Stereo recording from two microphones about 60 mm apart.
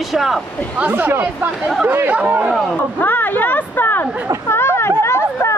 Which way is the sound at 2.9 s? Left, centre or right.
Left.